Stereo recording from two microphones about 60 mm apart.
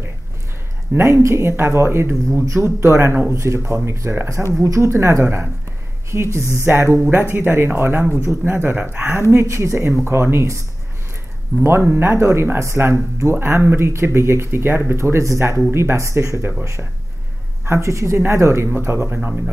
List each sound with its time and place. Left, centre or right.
0.9 s speech: right
9.3 s speech: right
11.6 s speech: right
17.6 s speech: right